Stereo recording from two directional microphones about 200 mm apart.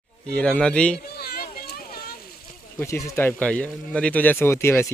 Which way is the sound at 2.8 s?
15° left (ahead or behind).